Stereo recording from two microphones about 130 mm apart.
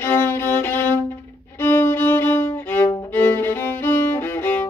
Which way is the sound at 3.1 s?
15° left (ahead or behind).